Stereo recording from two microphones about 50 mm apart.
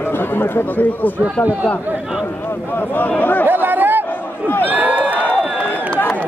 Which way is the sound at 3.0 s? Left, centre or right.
Left.